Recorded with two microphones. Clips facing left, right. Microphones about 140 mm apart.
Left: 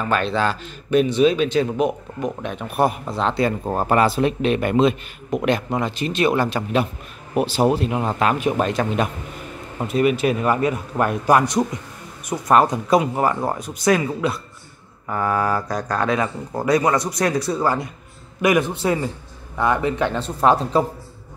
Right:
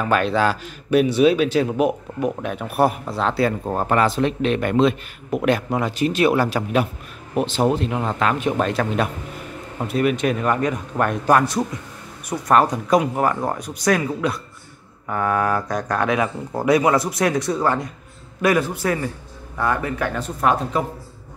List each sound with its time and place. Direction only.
0.0 s speech: 10° right (ahead or behind)
7.3 s a man's voice: 5° left (ahead or behind)
18.4 s speech: 20° left (ahead or behind)